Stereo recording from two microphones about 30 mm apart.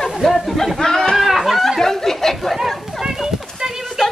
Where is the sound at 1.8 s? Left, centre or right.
Centre.